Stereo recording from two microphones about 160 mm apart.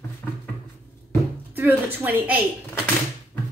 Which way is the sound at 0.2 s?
5° left (ahead or behind).